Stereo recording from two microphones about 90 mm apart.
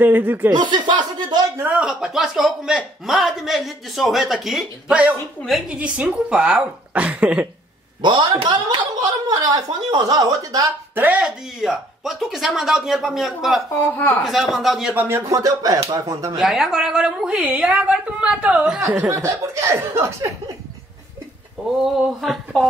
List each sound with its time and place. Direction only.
0.0 s speech: 20° right (ahead or behind)
0.5 s speech: 55° right (ahead or behind)
1.7 s a man's voice: 10° right (ahead or behind)
5.7 s a woman's voice: 15° right (ahead or behind)
8.0 s speech: 60° right (ahead or behind)
9.0 s speech: 40° right (ahead or behind)
11.0 s a woman's voice: 15° right (ahead or behind)
11.2 s a man's voice: 5° right (ahead or behind)
15.0 s speech: 25° right (ahead or behind)
15.2 s speech: 40° right (ahead or behind)
16.3 s a woman's voice: 5° right (ahead or behind)
19.0 s speech: 30° right (ahead or behind)
21.6 s a man's voice: centre (ahead or behind)